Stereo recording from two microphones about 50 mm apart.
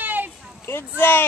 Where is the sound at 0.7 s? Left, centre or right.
Left.